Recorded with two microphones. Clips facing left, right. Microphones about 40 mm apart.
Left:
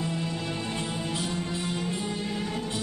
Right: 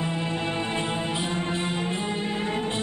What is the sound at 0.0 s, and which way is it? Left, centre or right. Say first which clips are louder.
Music: right 3 dB; right.